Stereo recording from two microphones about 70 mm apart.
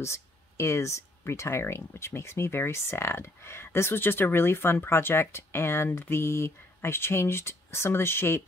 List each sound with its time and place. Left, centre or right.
0.0 s speech: left